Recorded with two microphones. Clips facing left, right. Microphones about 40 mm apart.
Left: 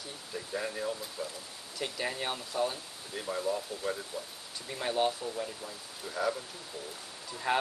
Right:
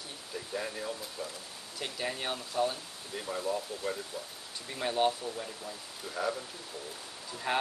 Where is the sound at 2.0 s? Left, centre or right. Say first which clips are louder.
Even; centre.